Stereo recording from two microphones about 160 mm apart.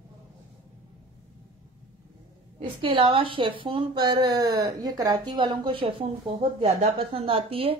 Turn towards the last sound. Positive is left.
turn(degrees=-35)  # may be behind; listen again after turning